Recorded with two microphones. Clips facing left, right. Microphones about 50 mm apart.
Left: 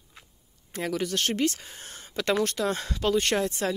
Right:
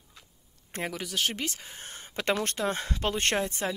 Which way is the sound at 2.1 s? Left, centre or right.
Right.